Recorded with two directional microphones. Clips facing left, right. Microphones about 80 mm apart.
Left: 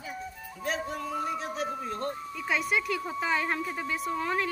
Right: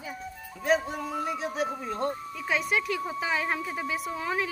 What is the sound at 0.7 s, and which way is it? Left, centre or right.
Speech, centre.